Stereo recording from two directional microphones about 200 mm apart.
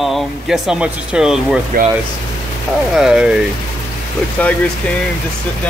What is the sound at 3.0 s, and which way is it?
Speech, 5° right (ahead or behind).